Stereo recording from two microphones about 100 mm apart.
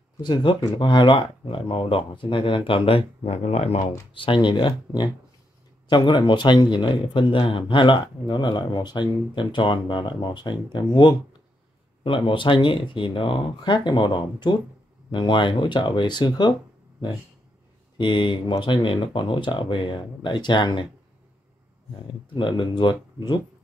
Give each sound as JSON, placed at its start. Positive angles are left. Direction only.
{"t": 0.2, "sound": "speech", "side_deg": 50}
{"t": 4.1, "sound": "speech", "side_deg": 60}
{"t": 17.9, "sound": "speech", "side_deg": 50}
{"t": 22.3, "sound": "speech", "side_deg": 55}